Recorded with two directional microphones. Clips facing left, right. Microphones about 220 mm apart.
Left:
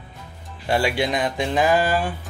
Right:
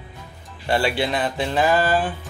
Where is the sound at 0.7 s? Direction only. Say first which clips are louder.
Even; 10° left (ahead or behind).